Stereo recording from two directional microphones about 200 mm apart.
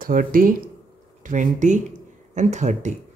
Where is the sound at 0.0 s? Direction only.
45° right (ahead or behind).